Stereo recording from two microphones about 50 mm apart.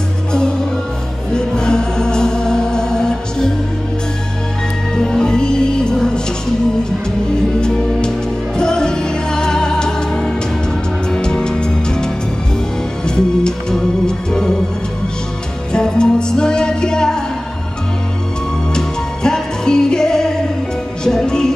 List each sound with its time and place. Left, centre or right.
1.3 s music: centre
4.9 s music: centre
8.5 s music: centre
15.7 s music: centre
18.8 s music: centre